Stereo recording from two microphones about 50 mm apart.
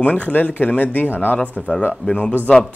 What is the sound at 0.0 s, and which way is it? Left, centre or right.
Speech, left.